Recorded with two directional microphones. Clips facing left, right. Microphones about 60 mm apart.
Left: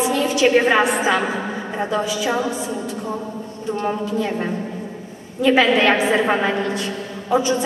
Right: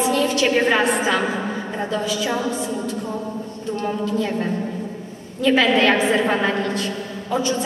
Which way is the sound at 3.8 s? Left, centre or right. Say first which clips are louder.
Even; left.